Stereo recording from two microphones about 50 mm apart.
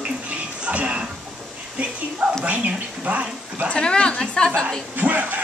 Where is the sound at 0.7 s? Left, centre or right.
Right.